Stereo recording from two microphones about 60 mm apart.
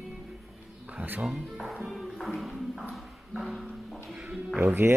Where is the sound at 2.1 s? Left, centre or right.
Centre.